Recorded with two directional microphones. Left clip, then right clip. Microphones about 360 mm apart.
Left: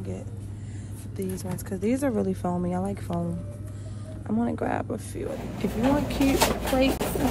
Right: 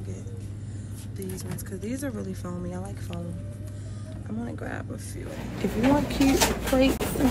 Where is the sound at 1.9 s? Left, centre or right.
Centre.